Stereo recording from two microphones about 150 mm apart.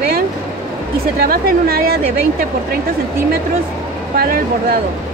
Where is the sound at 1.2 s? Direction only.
85° right.